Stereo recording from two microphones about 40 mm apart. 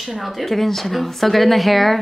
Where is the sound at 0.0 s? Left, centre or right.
Centre.